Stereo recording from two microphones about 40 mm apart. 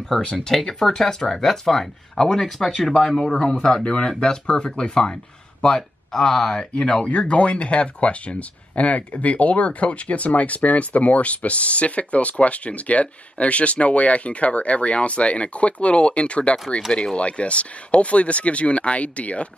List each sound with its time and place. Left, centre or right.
0.3 s speech: centre
3.6 s speech: centre
6.5 s speech: left